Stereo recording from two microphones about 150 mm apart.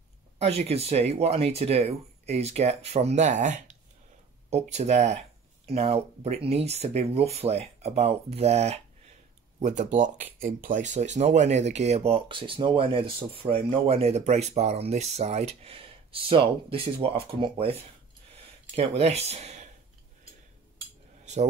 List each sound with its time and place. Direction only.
0.4 s speech: 45° right (ahead or behind)
9.6 s speech: 55° right (ahead or behind); by 17.7 s 35° right (ahead or behind)
18.3 s a sound: 45° right (ahead or behind)